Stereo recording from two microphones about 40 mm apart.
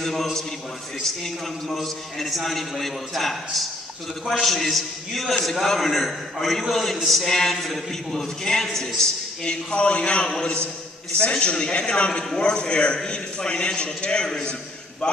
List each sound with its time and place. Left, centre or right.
0.0 s a man's voice: centre; by 14.5 s left